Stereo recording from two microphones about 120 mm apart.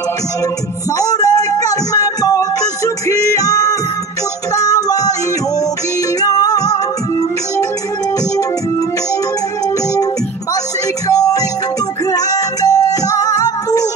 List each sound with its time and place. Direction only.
0.9 s music: 30° left (ahead or behind)
6.2 s music: 30° left (ahead or behind)
11.1 s music: 30° left (ahead or behind)